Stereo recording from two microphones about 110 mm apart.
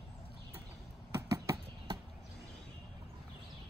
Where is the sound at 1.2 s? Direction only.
30° right (ahead or behind).